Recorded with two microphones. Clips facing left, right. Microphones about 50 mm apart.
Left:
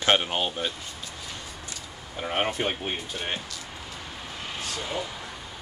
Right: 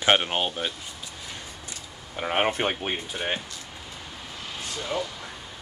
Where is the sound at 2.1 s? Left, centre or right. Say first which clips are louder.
Right 3 dB; right.